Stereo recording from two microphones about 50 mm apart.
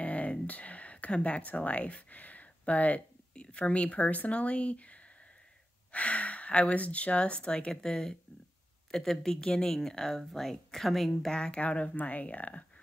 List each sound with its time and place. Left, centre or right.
0.0 s a sound: left
3.4 s speech: left; by 11.3 s centre
11.3 s speech: left